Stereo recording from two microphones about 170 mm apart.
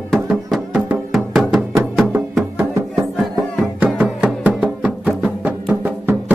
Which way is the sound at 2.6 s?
15° right (ahead or behind).